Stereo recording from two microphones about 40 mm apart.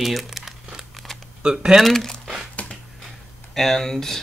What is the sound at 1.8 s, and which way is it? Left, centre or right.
Speech, centre.